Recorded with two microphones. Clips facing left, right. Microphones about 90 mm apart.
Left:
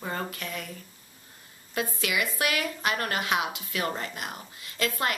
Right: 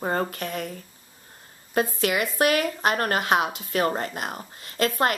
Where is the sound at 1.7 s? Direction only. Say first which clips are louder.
Right 6 dB; 45° right (ahead or behind).